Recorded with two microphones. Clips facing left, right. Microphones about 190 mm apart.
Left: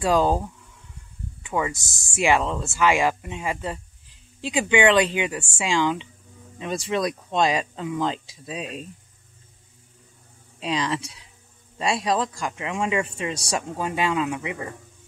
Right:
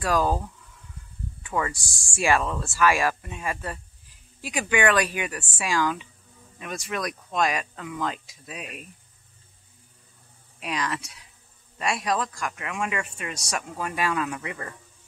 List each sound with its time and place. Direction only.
0.0 s speech: 25° left (ahead or behind)
10.6 s speech: 25° left (ahead or behind)